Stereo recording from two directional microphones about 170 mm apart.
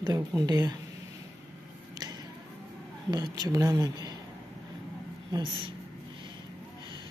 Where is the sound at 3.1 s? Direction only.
25° right (ahead or behind).